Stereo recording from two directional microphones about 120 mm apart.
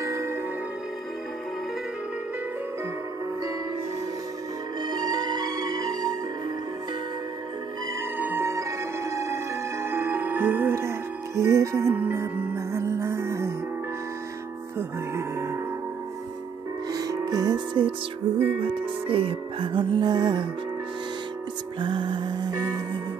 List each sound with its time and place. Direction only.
0.0 s music: 25° right (ahead or behind)
4.8 s music: 30° right (ahead or behind)
8.2 s music: 20° right (ahead or behind)
11.9 s music: 15° right (ahead or behind)
12.2 s music: 25° right (ahead or behind)
14.8 s music: 20° right (ahead or behind)
16.9 s music: 30° right (ahead or behind)
19.0 s music: 50° right (ahead or behind)
21.7 s music: 40° right (ahead or behind)